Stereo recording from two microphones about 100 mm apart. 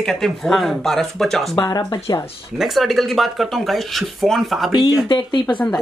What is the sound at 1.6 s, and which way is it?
Speech, 40° left (ahead or behind).